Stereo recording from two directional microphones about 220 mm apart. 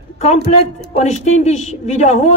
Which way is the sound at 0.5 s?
30° left (ahead or behind).